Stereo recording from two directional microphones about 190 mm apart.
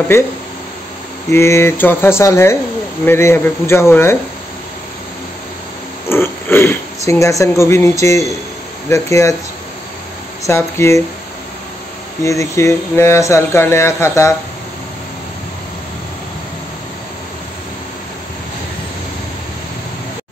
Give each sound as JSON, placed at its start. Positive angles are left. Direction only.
{"t": 0.1, "sound": "speech", "side_deg": 15}
{"t": 1.3, "sound": "speech", "side_deg": 15}
{"t": 6.0, "sound": "speech", "side_deg": 10}
{"t": 10.4, "sound": "speech", "side_deg": 15}
{"t": 12.2, "sound": "speech", "side_deg": 15}